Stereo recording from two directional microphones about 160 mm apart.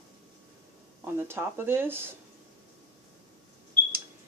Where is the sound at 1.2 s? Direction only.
15° right (ahead or behind).